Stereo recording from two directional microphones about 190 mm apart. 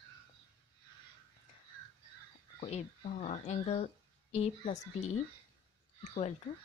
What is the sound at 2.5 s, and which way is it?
Speech, 35° left (ahead or behind).